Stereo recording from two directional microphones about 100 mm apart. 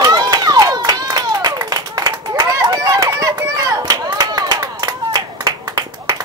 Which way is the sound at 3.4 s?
35° right (ahead or behind).